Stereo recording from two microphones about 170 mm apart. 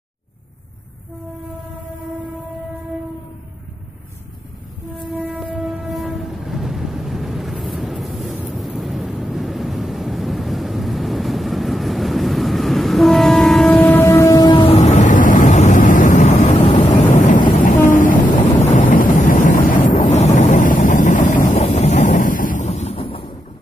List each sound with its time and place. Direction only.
4.9 s train: 5° right (ahead or behind); by 14.8 s 30° left (ahead or behind)
14.8 s vehicle: 45° left (ahead or behind)
17.8 s train: 50° left (ahead or behind)
18.8 s vehicle: 50° left (ahead or behind); by 23.3 s 30° left (ahead or behind)